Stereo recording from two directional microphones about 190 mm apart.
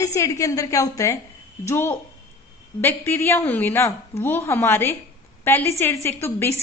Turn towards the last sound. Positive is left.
turn(degrees=15)  # may be behind; listen again after turning